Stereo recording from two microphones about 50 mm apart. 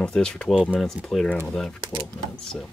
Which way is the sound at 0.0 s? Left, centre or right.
Centre.